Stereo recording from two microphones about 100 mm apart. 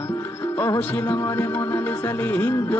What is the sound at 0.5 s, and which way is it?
Music, 25° left (ahead or behind).